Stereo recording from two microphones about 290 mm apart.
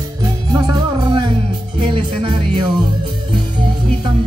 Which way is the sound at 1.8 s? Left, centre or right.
Centre.